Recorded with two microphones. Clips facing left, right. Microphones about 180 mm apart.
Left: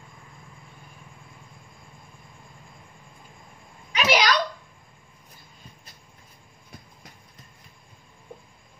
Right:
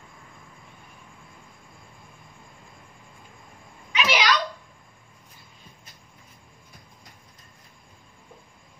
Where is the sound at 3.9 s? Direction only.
40° left (ahead or behind).